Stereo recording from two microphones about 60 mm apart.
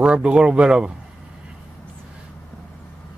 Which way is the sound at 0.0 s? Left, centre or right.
Centre.